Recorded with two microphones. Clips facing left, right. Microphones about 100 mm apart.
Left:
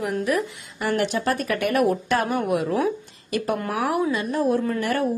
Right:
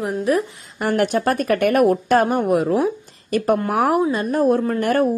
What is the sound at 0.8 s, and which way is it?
Speech, 50° right (ahead or behind).